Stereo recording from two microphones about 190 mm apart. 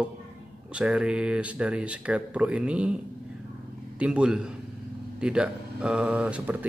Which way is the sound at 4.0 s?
5° right (ahead or behind).